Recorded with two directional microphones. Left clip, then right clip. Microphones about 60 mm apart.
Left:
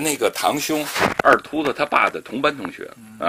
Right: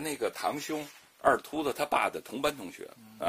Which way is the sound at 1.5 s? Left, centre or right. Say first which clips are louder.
Left 10 dB; centre.